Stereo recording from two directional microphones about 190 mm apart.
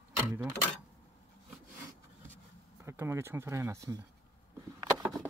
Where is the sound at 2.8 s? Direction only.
15° right (ahead or behind).